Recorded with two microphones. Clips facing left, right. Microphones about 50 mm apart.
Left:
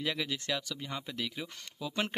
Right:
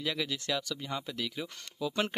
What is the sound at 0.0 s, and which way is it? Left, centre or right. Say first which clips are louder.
Speech: right 1 dB; centre.